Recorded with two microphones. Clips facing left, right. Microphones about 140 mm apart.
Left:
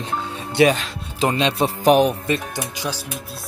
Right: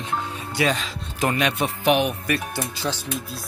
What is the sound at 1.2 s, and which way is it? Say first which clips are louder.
Speech: left 3 dB; 25° left (ahead or behind).